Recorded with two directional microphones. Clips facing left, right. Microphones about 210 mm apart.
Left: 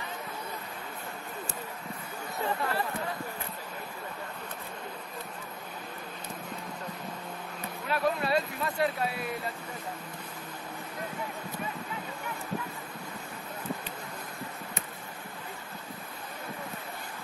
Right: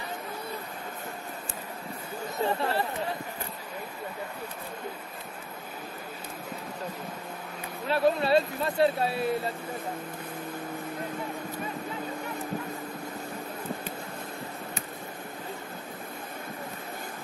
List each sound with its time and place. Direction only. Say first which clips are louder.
2.4 s speech: right 4 dB; 25° right (ahead or behind)
7.9 s speech: right 5 dB; 30° right (ahead or behind)